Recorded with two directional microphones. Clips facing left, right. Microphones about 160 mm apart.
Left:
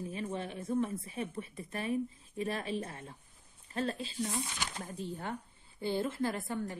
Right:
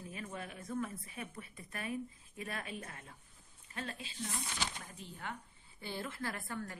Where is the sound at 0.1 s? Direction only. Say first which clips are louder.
Left 7 dB; 30° left (ahead or behind).